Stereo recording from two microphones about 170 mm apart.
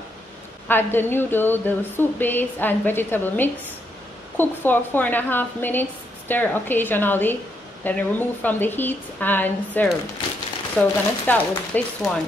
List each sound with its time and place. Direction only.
0.7 s a woman's voice: 10° left (ahead or behind)